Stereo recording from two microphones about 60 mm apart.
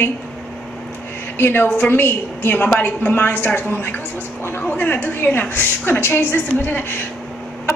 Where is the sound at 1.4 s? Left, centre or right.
Left.